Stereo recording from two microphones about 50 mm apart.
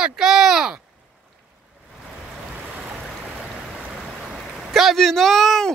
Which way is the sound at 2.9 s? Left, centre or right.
Centre.